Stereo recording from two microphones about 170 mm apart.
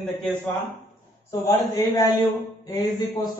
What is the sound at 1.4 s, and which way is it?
A man's voice, 20° left (ahead or behind).